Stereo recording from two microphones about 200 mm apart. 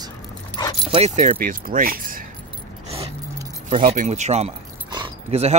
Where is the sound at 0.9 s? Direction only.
35° right (ahead or behind).